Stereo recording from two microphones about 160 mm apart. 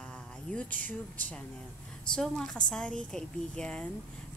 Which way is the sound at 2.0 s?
5° left (ahead or behind).